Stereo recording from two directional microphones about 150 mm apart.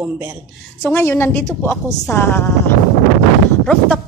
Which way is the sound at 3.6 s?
5° left (ahead or behind).